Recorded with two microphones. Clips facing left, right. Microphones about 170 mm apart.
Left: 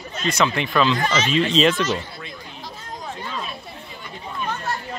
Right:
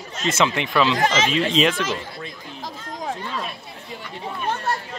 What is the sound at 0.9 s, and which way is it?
Speech, 90° right.